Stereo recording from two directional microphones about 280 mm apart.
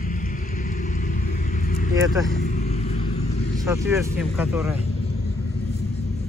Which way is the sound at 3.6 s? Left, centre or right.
Centre.